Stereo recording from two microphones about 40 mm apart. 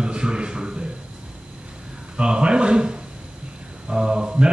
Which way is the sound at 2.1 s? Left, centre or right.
Right.